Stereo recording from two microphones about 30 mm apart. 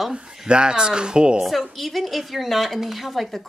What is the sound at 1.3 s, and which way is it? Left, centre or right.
Speech, centre.